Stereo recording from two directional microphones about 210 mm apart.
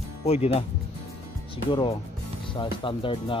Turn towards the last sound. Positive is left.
turn(degrees=25)  # may be behind; listen again after turning